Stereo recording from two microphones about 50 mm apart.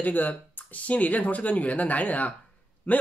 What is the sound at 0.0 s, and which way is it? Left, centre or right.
Speech, left.